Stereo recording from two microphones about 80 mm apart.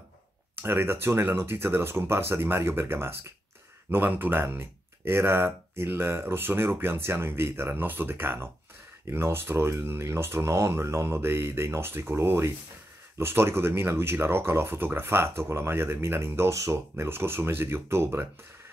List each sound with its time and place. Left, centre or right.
0.6 s speech: right